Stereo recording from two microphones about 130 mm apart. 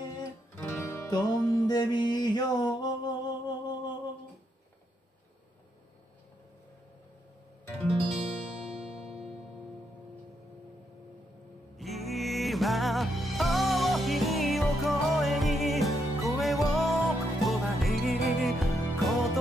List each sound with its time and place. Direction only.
0.6 s music: 20° left (ahead or behind)
1.1 s music: 30° left (ahead or behind)
8.3 s music: 5° right (ahead or behind)
11.7 s music: centre (ahead or behind)